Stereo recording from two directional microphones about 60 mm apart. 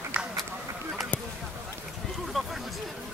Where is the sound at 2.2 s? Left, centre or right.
Centre.